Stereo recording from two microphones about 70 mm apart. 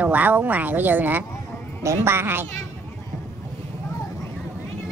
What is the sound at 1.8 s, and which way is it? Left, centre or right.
Speech, right.